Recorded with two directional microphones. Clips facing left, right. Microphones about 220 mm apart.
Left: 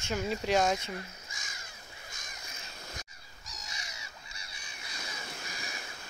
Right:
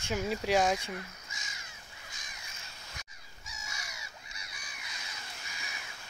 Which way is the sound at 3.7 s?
20° left (ahead or behind).